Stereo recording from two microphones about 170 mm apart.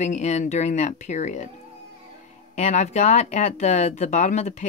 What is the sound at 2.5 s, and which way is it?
Speech, 45° left (ahead or behind).